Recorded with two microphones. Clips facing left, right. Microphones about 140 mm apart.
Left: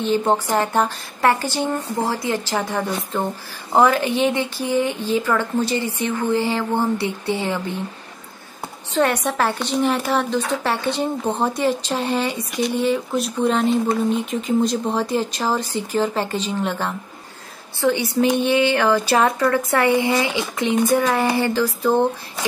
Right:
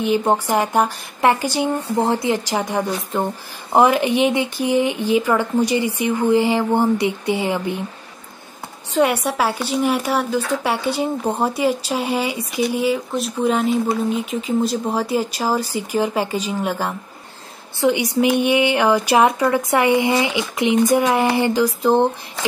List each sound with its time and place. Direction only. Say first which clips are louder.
0.0 s speech: right 1 dB; 10° right (ahead or behind)
8.9 s speech: right 2 dB; 10° right (ahead or behind)